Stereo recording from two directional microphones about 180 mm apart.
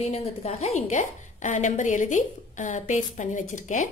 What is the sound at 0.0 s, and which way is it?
A woman's voice, 35° left (ahead or behind).